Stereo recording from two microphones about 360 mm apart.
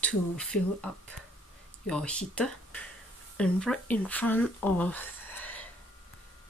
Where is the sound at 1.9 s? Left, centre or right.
Centre.